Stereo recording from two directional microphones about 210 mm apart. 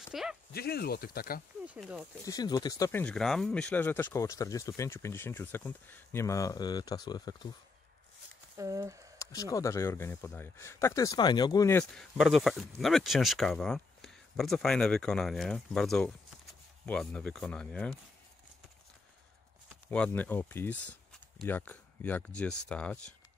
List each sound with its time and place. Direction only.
0.1 s speech: centre (ahead or behind)
0.5 s speech: 50° left (ahead or behind)
1.7 s speech: 5° right (ahead or behind)
2.2 s speech: 20° left (ahead or behind)
8.5 s speech: 15° right (ahead or behind)
9.2 s speech: 15° left (ahead or behind)
11.8 s speech: 5° left (ahead or behind)
19.9 s speech: 5° left (ahead or behind)